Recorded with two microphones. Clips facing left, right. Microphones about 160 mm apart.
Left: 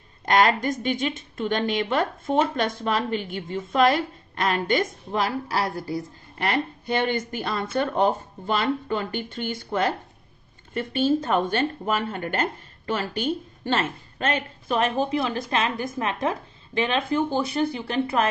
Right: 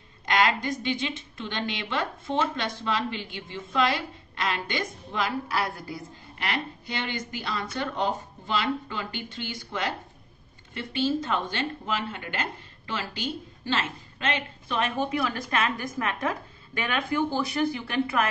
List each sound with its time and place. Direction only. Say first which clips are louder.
0.2 s a woman's voice: left 4 dB; 50° left (ahead or behind)
6.3 s a woman's voice: left 6 dB; 50° left (ahead or behind); by 18.3 s 30° left (ahead or behind)